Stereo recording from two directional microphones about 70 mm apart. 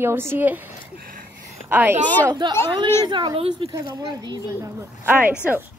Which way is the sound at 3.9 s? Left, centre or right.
Right.